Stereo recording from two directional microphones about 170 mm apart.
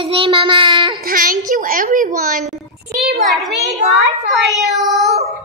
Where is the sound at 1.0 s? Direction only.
55° right (ahead or behind).